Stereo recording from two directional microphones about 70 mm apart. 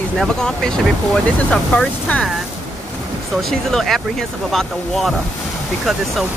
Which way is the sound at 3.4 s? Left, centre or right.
Centre.